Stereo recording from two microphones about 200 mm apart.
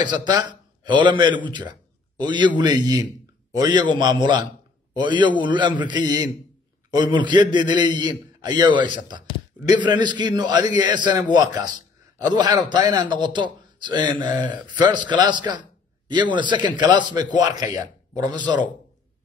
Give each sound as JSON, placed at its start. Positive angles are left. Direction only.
{"t": 0.0, "sound": "a man's voice", "side_deg": -20}